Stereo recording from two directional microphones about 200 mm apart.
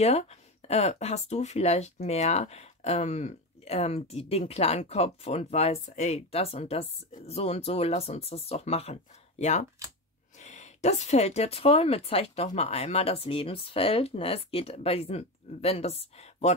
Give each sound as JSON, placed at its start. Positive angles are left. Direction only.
{"t": 0.0, "sound": "speech", "side_deg": 30}